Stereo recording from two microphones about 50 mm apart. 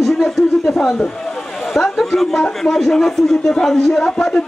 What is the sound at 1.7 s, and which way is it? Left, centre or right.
A man's voice, centre.